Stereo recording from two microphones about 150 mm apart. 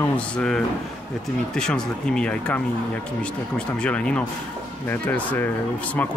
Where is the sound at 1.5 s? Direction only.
5° left (ahead or behind).